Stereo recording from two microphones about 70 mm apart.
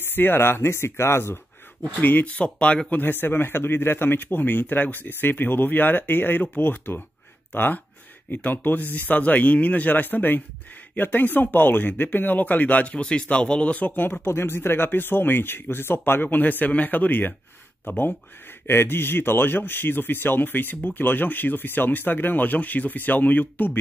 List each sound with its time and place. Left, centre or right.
0.1 s speech: left
2.0 s speech: left
2.9 s speech: left